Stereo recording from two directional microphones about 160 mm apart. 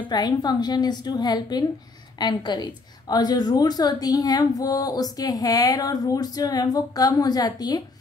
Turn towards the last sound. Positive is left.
turn(degrees=25)  # may be behind; listen again after turning